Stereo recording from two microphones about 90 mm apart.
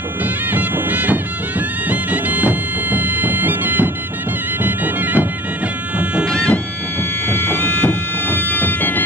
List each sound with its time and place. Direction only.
0.2 s music: 20° right (ahead or behind)
6.2 s music: 15° left (ahead or behind)
7.5 s bagpipes: 20° left (ahead or behind)